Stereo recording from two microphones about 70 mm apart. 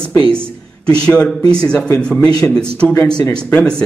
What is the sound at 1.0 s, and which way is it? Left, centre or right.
A man's voice, centre.